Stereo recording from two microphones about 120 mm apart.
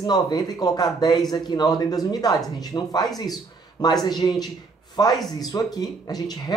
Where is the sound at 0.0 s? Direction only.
35° left (ahead or behind).